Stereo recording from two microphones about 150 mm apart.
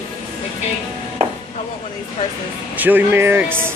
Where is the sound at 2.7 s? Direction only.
10° right (ahead or behind).